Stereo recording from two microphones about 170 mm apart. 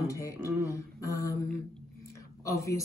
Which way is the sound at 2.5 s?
20° left (ahead or behind).